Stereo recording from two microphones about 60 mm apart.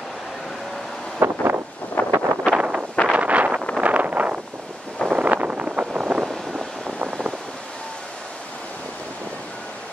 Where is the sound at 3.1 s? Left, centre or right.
Right.